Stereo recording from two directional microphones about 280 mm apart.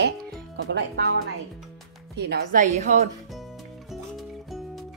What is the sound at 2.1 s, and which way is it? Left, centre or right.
Speech, right.